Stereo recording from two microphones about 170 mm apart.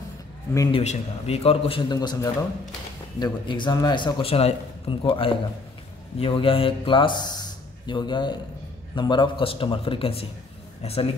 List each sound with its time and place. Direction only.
0.6 s a man's voice: 30° left (ahead or behind)